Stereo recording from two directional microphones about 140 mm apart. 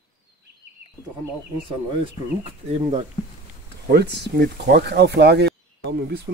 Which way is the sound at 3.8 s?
90° right.